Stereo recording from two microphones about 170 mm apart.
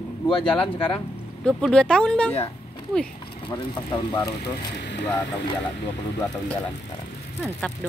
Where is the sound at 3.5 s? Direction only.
25° left (ahead or behind).